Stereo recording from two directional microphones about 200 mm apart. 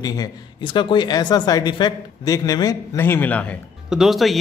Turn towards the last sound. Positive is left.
turn(degrees=0)  # may be behind; listen again after turning